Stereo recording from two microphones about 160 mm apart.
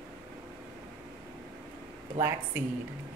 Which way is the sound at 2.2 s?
45° right (ahead or behind).